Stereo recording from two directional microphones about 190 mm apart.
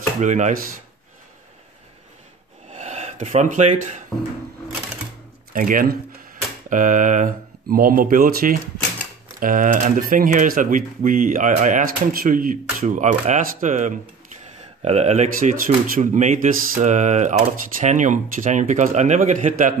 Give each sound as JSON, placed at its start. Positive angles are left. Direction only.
{"t": 0.2, "sound": "speech", "side_deg": -40}
{"t": 2.7, "sound": "speech", "side_deg": -35}
{"t": 5.5, "sound": "speech", "side_deg": -45}